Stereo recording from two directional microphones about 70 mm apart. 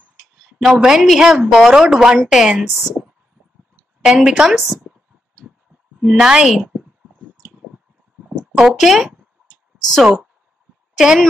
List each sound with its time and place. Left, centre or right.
0.2 s a woman's voice: centre
4.0 s a woman's voice: centre
5.9 s speech: centre
7.5 s a sound: centre
8.5 s speech: centre
10.0 s speech: centre